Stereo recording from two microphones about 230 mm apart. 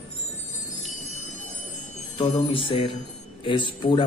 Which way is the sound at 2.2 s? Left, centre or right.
Left.